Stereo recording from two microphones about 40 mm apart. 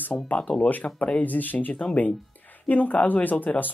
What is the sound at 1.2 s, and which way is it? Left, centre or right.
Speech, left.